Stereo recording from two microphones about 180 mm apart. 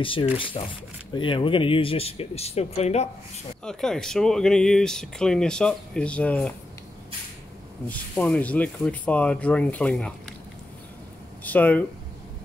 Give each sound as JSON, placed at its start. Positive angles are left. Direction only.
{"t": 0.0, "sound": "speech", "side_deg": 30}
{"t": 3.6, "sound": "speech", "side_deg": 5}
{"t": 7.9, "sound": "speech", "side_deg": 10}
{"t": 11.4, "sound": "speech", "side_deg": 10}